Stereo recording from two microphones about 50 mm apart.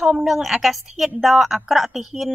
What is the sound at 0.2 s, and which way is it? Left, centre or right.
A woman's voice, centre.